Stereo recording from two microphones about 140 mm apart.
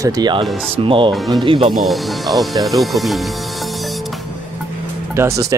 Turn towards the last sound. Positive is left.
turn(degrees=-20)  # may be behind; listen again after turning